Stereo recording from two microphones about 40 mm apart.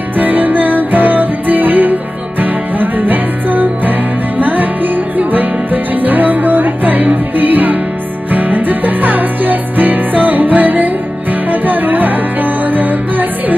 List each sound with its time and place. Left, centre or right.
0.2 s music: right